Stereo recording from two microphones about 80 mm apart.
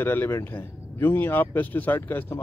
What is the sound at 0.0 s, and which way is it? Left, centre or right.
A man's voice, left.